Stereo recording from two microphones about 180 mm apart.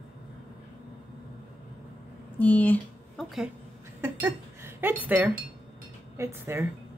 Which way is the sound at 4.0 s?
15° right (ahead or behind).